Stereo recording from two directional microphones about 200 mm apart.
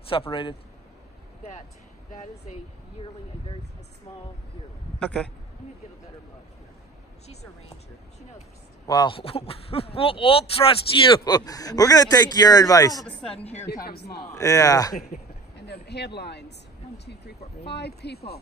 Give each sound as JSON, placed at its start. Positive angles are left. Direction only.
{"t": 0.1, "sound": "speech", "side_deg": 25}
{"t": 5.0, "sound": "a man's voice", "side_deg": 5}
{"t": 8.8, "sound": "speech", "side_deg": 20}
{"t": 13.4, "sound": "a woman's voice", "side_deg": 35}
{"t": 13.8, "sound": "a man's voice", "side_deg": 55}
{"t": 14.3, "sound": "speech", "side_deg": 15}
{"t": 15.0, "sound": "a woman's voice", "side_deg": 35}
{"t": 15.5, "sound": "speech", "side_deg": 55}